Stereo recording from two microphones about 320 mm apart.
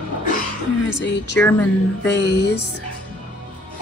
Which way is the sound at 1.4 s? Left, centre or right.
Centre.